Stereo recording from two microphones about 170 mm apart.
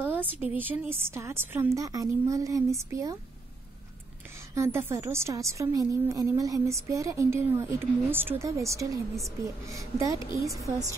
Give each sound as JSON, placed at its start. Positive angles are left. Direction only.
{"t": 0.0, "sound": "a sound", "side_deg": -10}
{"t": 0.6, "sound": "a woman's voice", "side_deg": -10}
{"t": 4.6, "sound": "a woman's voice", "side_deg": -15}